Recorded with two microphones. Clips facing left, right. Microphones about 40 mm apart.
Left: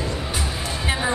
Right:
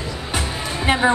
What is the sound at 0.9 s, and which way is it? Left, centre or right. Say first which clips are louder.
Music: right 7 dB; right.